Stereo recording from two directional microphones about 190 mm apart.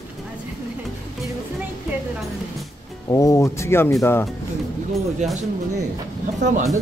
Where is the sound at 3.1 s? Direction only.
15° left (ahead or behind).